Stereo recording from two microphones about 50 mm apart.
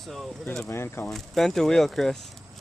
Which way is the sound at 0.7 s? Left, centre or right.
Left.